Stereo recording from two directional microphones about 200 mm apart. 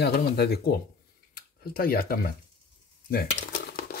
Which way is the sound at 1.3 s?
50° left (ahead or behind).